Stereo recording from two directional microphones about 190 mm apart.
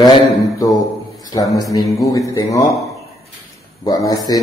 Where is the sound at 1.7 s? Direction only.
20° left (ahead or behind).